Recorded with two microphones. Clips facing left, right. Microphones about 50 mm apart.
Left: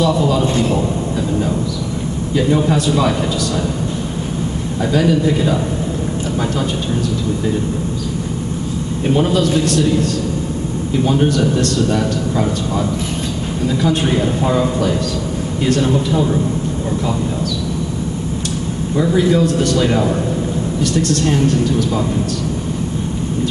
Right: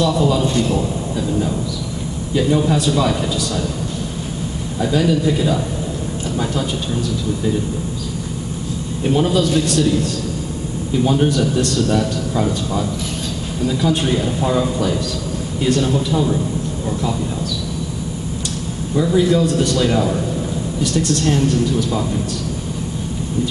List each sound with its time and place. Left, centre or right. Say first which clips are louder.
0.0 s a man's voice: left 1 dB; centre
2.3 s a man's voice: left 1 dB; centre
4.9 s a man's voice: left 2 dB; centre
9.0 s a man's voice: left 1 dB; centre
11.3 s a man's voice: left 2 dB; centre
18.9 s a man's voice: left 1 dB; centre
21.2 s a man's voice: left 2 dB; centre